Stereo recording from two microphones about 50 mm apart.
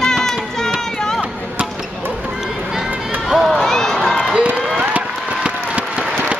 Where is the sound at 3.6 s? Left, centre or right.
Centre.